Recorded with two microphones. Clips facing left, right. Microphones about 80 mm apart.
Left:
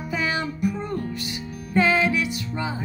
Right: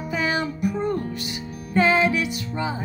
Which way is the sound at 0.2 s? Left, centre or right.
Centre.